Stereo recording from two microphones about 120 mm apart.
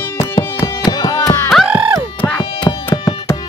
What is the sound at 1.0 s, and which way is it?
Music, 35° left (ahead or behind).